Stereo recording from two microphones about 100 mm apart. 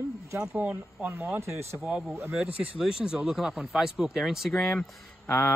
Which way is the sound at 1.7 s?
10° right (ahead or behind).